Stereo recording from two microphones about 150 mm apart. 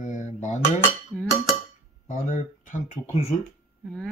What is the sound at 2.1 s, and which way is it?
Speech, 55° left (ahead or behind).